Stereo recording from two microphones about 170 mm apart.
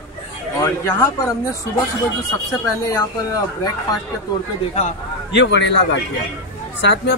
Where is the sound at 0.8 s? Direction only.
15° left (ahead or behind).